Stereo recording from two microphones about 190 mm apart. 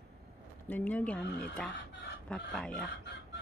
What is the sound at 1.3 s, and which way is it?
Speech, 60° left (ahead or behind).